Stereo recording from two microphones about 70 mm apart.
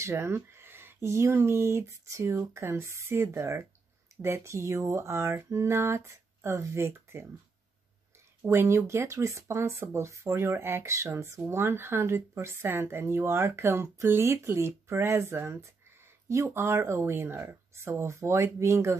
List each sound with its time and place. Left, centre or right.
0.0 s a woman's voice: right
8.5 s a woman's voice: right